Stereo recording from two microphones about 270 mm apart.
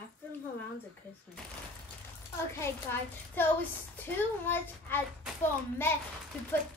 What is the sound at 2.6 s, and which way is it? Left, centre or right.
A child's voice, centre.